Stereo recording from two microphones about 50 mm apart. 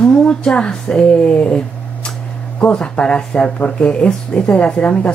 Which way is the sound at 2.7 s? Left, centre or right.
Left.